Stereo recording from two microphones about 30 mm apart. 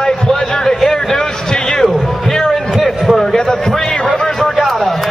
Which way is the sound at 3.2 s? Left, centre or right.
Centre.